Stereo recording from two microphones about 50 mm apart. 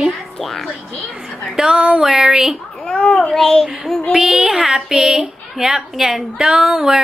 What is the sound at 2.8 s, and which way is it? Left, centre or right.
Speech, left.